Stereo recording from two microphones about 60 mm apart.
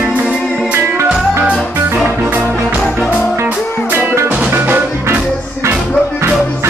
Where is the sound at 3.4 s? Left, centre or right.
Right.